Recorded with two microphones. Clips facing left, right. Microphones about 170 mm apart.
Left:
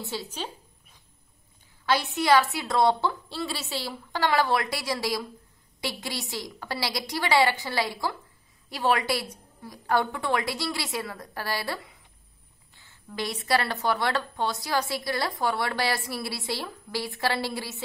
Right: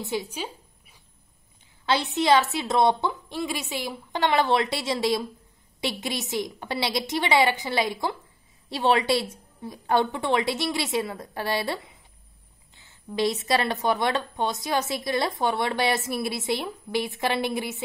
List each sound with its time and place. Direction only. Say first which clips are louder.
0.0 s speech: right 4 dB; 15° right (ahead or behind)
1.9 s a woman's voice: right 1 dB; 20° right (ahead or behind)